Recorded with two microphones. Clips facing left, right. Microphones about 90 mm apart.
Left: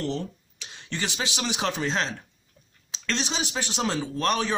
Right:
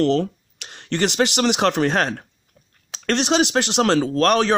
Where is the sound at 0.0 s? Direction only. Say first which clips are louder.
Right 11 dB; 90° right.